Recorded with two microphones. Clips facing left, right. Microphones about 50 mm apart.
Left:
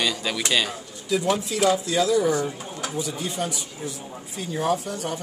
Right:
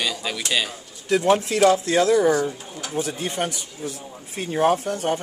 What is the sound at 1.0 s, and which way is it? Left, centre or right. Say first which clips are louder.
Speech: right 5 dB; right.